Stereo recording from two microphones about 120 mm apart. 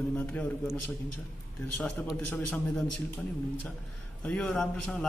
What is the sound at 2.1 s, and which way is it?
Speech, 15° left (ahead or behind).